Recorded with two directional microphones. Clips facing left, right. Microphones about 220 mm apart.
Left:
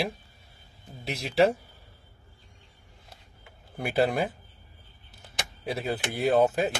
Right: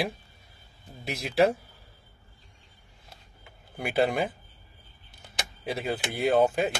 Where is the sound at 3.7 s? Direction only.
Centre (ahead or behind).